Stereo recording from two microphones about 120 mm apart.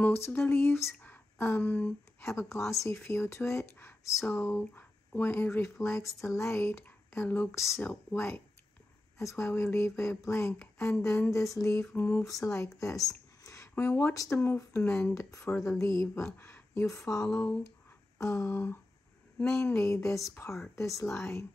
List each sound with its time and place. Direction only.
0.0 s speech: 20° left (ahead or behind)
0.9 s whispering: 15° left (ahead or behind)
2.2 s speech: 25° left (ahead or behind)
11.9 s mantra: 15° left (ahead or behind)
12.5 s speech: 25° left (ahead or behind)
17.3 s mantra: 10° left (ahead or behind)
18.2 s speech: 25° left (ahead or behind)